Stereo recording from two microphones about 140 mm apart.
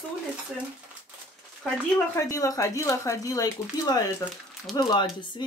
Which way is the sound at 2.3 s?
25° left (ahead or behind).